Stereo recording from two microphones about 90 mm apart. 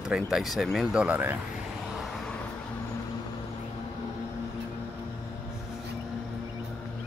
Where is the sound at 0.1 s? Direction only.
5° right (ahead or behind).